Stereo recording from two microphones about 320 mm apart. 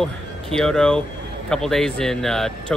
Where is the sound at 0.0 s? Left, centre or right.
Centre.